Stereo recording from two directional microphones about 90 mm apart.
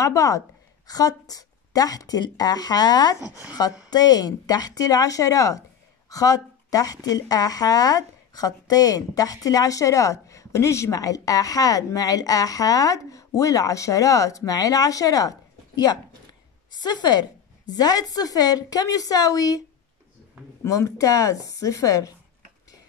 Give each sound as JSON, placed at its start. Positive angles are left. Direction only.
{"t": 0.0, "sound": "speech", "side_deg": 35}
{"t": 20.6, "sound": "speech", "side_deg": 35}